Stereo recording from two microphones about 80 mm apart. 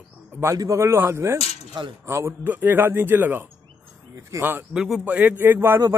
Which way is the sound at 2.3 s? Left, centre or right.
Right.